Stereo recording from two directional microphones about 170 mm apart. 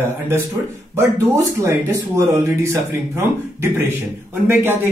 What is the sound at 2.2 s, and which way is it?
Speech, 15° right (ahead or behind).